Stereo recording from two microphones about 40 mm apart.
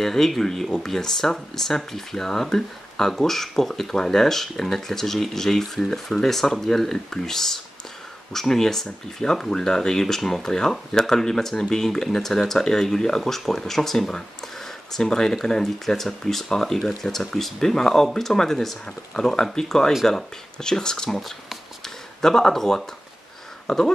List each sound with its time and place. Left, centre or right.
0.0 s speech: centre
21.2 s a sound: centre
23.7 s speech: centre